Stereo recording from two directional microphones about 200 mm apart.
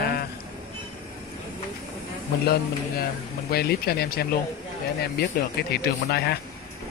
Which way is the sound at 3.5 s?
50° left (ahead or behind).